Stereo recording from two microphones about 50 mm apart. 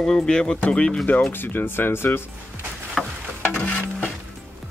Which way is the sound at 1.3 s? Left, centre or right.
Left.